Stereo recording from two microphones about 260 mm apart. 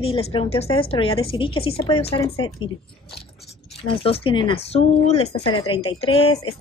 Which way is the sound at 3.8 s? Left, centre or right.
Left.